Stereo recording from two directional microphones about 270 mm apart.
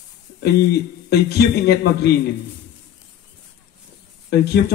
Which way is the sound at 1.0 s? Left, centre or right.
Left.